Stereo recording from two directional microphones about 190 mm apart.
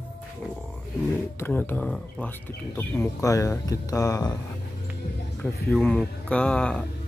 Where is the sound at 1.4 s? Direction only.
10° left (ahead or behind).